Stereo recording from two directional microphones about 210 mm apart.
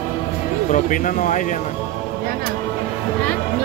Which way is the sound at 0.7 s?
40° left (ahead or behind).